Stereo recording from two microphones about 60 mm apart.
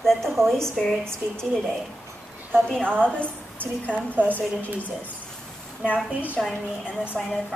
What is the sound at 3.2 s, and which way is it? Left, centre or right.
Speech, right.